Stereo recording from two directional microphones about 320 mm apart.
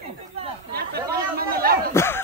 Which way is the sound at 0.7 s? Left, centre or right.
Right.